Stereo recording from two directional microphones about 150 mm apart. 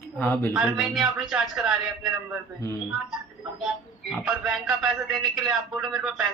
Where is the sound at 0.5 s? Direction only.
Centre (ahead or behind).